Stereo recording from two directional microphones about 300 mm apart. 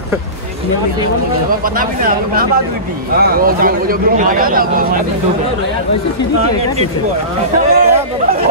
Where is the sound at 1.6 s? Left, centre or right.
Right.